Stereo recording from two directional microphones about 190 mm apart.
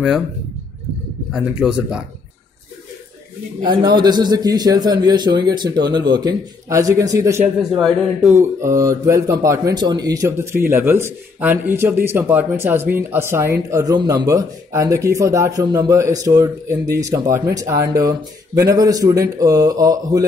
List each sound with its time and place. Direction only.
1.3 s a man's voice: 5° right (ahead or behind)
3.6 s a man's voice: 25° right (ahead or behind)
7.7 s a man's voice: centre (ahead or behind)
8.4 s a man's voice: 15° right (ahead or behind)